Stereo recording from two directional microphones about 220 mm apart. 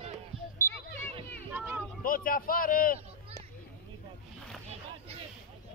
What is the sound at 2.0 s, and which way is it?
Speech, 40° left (ahead or behind).